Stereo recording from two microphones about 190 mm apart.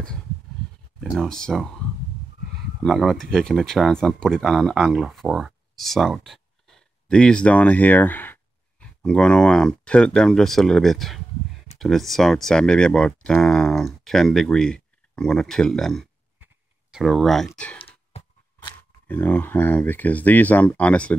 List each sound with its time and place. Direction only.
1.1 s speech: 5° left (ahead or behind)
2.8 s speech: centre (ahead or behind)
18.1 s a sound: 25° left (ahead or behind)
19.0 s speech: 10° left (ahead or behind)